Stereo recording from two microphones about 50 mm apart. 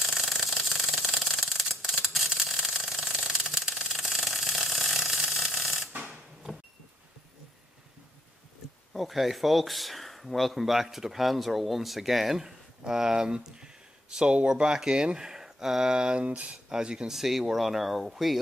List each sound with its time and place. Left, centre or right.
0.0 s engine: centre
1.5 s a sound: centre
5.6 s mechanisms: centre
8.9 s speech: centre
16.3 s speech: right
16.6 s speech: centre
17.1 s speech: centre